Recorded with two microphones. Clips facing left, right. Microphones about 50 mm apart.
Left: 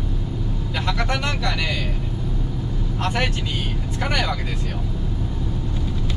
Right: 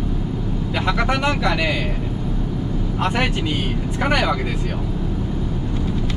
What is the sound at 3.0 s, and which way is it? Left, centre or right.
Speech, centre.